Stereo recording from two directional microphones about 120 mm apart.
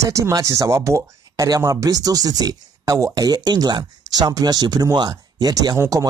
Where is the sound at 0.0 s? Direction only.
25° right (ahead or behind).